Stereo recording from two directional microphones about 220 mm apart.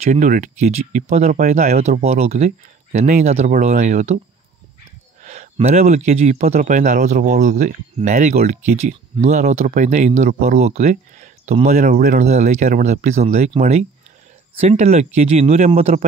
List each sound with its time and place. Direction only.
0.0 s speech: 35° right (ahead or behind)
5.2 s speech: 30° right (ahead or behind)